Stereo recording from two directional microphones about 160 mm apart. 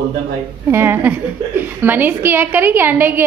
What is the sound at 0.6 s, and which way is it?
A woman's voice, 15° right (ahead or behind).